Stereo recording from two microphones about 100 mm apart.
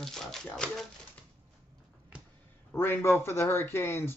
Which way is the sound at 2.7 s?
25° left (ahead or behind).